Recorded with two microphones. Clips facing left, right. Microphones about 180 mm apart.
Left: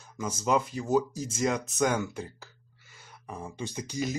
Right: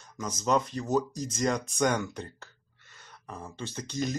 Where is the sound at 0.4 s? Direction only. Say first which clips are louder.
Even; 10° left (ahead or behind).